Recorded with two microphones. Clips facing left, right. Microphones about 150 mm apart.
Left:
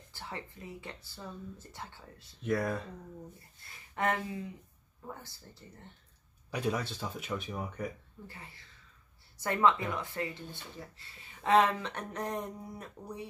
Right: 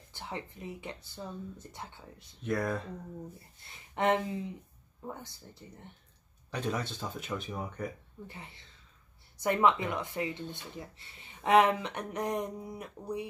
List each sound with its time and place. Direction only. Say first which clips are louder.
0.1 s speech: right 3 dB; 20° right (ahead or behind)
2.4 s speech: even; 5° left (ahead or behind)
3.6 s speech: right 3 dB; 20° right (ahead or behind)
6.5 s speech: left 1 dB; 5° left (ahead or behind)
8.3 s speech: right 3 dB; 20° right (ahead or behind)